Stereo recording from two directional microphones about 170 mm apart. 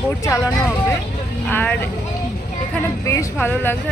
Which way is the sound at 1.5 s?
10° left (ahead or behind).